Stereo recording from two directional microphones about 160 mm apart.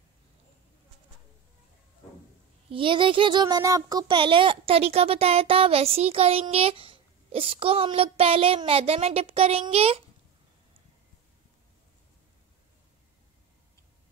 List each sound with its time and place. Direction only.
2.7 s speech: 30° right (ahead or behind)